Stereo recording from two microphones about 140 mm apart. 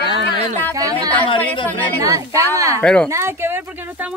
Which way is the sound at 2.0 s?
25° right (ahead or behind).